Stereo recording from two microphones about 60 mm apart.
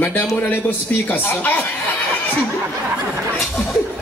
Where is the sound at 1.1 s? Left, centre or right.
Left.